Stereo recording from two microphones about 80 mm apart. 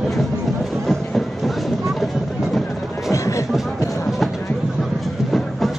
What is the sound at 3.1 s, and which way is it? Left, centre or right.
Music, left.